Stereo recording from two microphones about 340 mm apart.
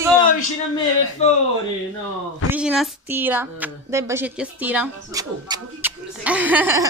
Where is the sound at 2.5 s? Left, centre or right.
Centre.